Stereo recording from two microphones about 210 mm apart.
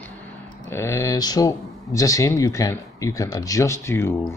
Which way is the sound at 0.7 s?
15° left (ahead or behind).